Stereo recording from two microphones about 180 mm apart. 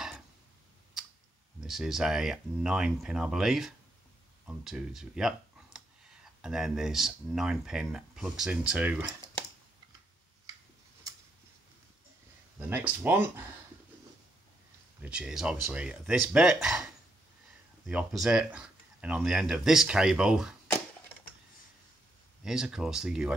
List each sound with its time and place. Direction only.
1.6 s speech: centre (ahead or behind)
12.5 s speech: 10° right (ahead or behind)
15.0 s speech: 5° right (ahead or behind)
22.4 s speech: 5° right (ahead or behind)